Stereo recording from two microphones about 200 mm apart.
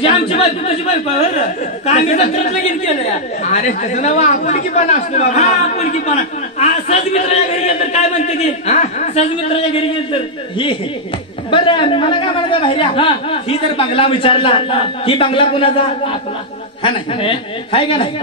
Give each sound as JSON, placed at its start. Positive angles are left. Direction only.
{"t": 1.4, "sound": "speech", "side_deg": 35}